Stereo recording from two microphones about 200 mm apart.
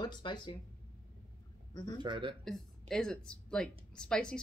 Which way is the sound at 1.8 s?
20° left (ahead or behind).